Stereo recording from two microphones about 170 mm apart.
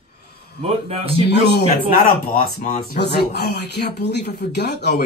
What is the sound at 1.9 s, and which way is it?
Speech, 55° left (ahead or behind).